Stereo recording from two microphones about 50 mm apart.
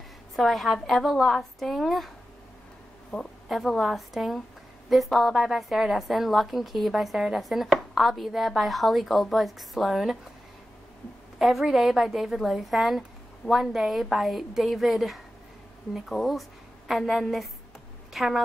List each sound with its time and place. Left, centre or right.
0.4 s a woman's voice: centre
3.1 s a woman's voice: left
3.4 s a woman's voice: centre
11.3 s a woman's voice: centre